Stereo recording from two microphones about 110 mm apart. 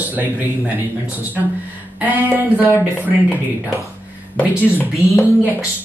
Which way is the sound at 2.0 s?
15° right (ahead or behind).